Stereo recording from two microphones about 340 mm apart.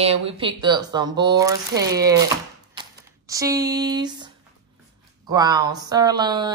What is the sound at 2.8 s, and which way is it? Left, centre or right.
Typewriter, centre.